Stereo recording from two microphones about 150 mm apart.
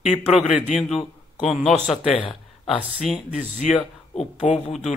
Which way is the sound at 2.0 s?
35° left (ahead or behind).